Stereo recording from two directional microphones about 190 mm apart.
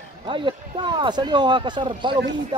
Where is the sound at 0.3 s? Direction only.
25° right (ahead or behind).